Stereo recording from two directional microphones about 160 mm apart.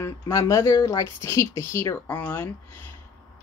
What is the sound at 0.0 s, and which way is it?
Speech, 20° left (ahead or behind).